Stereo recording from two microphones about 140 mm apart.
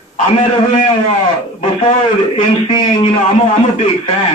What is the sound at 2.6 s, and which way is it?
Speech, 35° left (ahead or behind).